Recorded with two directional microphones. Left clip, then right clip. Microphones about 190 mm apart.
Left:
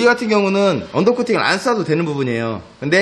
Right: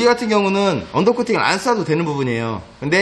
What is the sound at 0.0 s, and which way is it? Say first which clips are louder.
A man's voice: left 1 dB; 5° left (ahead or behind).